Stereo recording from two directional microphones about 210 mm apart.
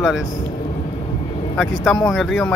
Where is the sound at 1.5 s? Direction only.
Centre (ahead or behind).